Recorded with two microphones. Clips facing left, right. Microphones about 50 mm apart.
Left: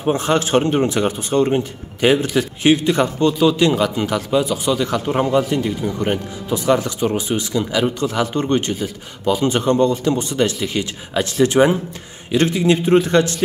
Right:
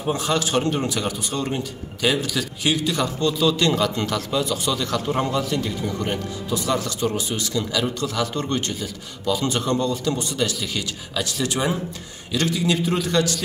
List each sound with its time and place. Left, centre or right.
0.0 s a man's voice: left